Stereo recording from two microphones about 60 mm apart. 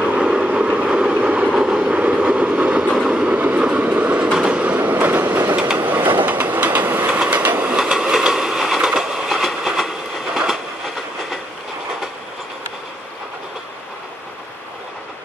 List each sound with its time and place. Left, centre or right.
0.0 s vehicle: centre
1.5 s train: centre; by 7.1 s right
7.1 s train: right
7.7 s train: centre